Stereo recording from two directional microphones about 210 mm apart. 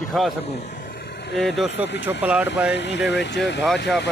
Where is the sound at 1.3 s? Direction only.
Centre (ahead or behind).